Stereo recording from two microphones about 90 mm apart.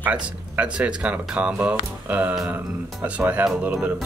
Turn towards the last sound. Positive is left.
turn(degrees=-15)  # may be behind; listen again after turning